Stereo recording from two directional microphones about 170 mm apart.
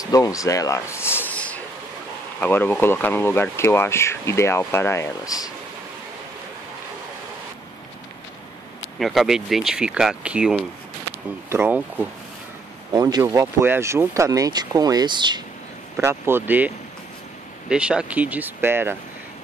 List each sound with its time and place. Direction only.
0.0 s a sound: 20° left (ahead or behind)
2.4 s speech: 10° left (ahead or behind)
9.0 s speech: centre (ahead or behind)
12.9 s speech: 20° right (ahead or behind)
16.0 s speech: 15° right (ahead or behind)